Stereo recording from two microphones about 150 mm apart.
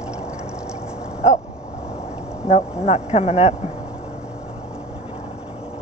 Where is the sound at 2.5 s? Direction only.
45° left (ahead or behind).